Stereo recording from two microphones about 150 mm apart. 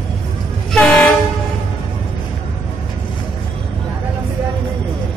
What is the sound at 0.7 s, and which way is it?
Train, 5° left (ahead or behind).